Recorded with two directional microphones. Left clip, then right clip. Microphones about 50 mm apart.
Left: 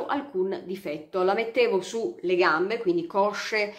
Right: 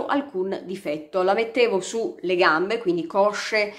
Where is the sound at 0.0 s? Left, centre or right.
Right.